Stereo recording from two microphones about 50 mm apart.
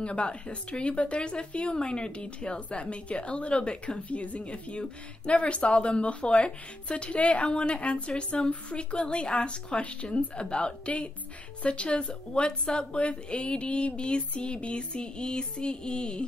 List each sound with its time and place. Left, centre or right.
0.0 s a woman's voice: left